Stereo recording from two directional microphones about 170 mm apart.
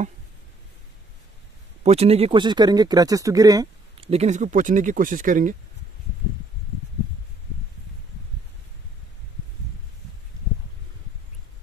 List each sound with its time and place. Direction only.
1.8 s speech: 40° right (ahead or behind); by 3.6 s 20° right (ahead or behind)
4.0 s speech: 40° right (ahead or behind)